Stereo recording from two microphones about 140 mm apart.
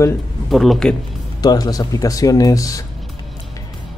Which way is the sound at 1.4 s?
30° left (ahead or behind).